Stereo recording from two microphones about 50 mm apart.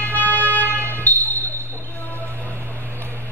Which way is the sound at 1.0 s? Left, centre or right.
Left.